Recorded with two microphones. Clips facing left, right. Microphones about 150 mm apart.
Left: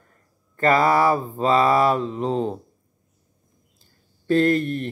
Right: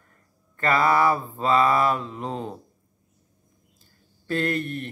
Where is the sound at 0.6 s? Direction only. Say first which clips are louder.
Left 3 dB; 40° left (ahead or behind).